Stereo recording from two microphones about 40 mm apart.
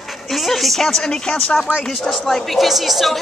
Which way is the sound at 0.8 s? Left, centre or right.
Centre.